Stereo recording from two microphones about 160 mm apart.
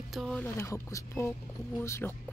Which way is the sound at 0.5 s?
20° left (ahead or behind).